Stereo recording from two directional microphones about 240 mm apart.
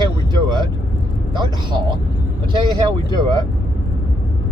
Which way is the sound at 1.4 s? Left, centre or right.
Centre.